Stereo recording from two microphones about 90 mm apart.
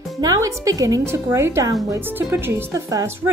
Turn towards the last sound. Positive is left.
turn(degrees=-35)  # may be behind; listen again after turning